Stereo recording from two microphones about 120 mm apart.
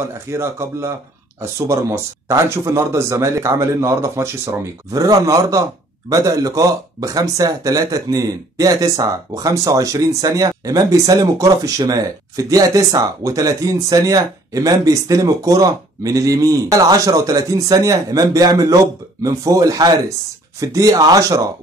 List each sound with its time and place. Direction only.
0.3 s speech: 25° right (ahead or behind)